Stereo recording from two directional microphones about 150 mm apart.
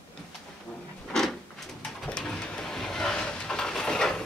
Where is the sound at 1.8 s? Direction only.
5° left (ahead or behind).